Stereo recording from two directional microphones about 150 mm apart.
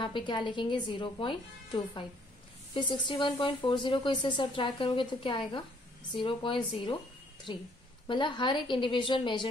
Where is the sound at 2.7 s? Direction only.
30° left (ahead or behind).